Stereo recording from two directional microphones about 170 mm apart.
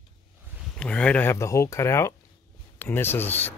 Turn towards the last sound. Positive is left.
turn(degrees=10)  # may be behind; listen again after turning